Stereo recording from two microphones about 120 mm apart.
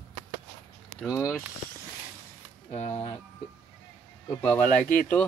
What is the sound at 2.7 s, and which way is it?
Speech, 65° left (ahead or behind).